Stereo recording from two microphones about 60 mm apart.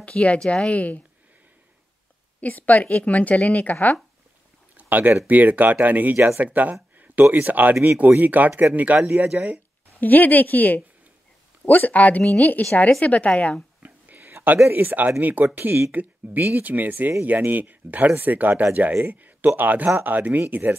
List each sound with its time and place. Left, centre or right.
0.0 s speech: left
2.4 s speech: left
4.7 s a sound: right
5.2 s speech: right
6.1 s speech: right
6.4 s speech: right
9.9 s speech: left
13.8 s a sound: right
14.7 s speech: right